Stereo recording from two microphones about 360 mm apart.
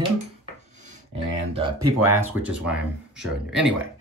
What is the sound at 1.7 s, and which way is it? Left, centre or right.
Speech, right.